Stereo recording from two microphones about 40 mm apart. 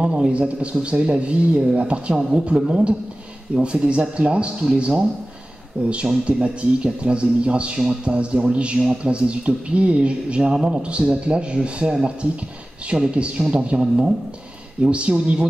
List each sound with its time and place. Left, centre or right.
0.3 s speech: right